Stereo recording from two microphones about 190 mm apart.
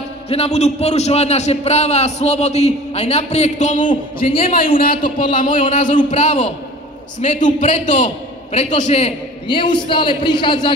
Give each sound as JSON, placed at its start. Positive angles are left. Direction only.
{"t": 0.3, "sound": "a man's voice", "side_deg": 35}
{"t": 4.5, "sound": "a man's voice", "side_deg": 50}
{"t": 4.7, "sound": "a man's voice", "side_deg": 25}
{"t": 5.3, "sound": "a man's voice", "side_deg": 45}